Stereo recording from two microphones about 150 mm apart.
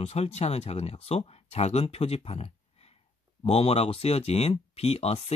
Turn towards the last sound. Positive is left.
turn(degrees=45)  # may be behind; listen again after turning